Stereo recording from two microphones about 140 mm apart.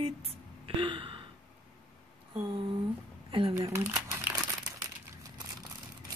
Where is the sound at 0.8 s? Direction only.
35° right (ahead or behind).